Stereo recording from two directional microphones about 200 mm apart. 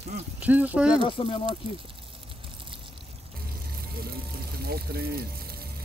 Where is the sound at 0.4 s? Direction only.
10° right (ahead or behind).